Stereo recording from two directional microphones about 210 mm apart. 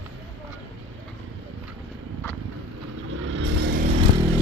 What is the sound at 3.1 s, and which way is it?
Vehicle, 65° right (ahead or behind).